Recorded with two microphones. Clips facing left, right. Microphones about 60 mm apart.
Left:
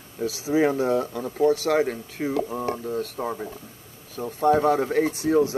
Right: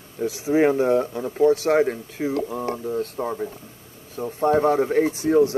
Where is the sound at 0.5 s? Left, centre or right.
Right.